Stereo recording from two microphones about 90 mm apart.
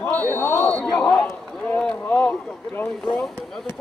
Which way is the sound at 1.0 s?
20° left (ahead or behind).